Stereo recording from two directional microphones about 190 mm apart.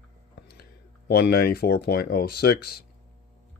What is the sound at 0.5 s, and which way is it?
Speech, 55° left (ahead or behind).